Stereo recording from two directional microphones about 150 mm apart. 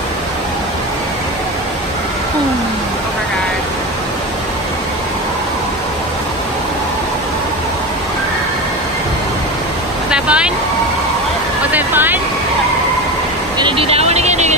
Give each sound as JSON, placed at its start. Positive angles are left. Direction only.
{"t": 10.1, "sound": "vehicle", "side_deg": -5}
{"t": 11.7, "sound": "vehicle", "side_deg": -15}
{"t": 13.6, "sound": "vehicle", "side_deg": -35}